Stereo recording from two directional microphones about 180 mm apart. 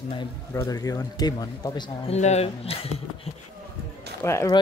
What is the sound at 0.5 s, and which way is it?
A man's voice, 20° left (ahead or behind).